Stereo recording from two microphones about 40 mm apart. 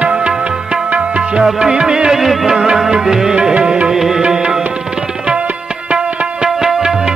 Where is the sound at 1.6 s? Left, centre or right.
Right.